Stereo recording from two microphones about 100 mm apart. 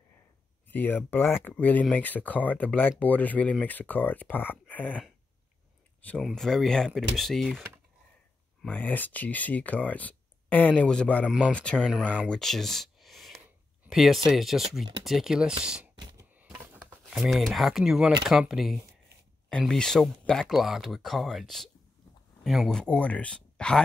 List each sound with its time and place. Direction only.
0.7 s speech: 20° left (ahead or behind)
5.9 s a sound: 15° left (ahead or behind)
6.2 s speech: 5° left (ahead or behind)
8.6 s speech: 15° left (ahead or behind)
11.9 s speech: 10° right (ahead or behind)
12.3 s a sound: 5° left (ahead or behind)
13.8 s speech: centre (ahead or behind)
16.3 s a sound: 15° right (ahead or behind)
17.1 s speech: centre (ahead or behind)
22.9 s speech: 10° left (ahead or behind)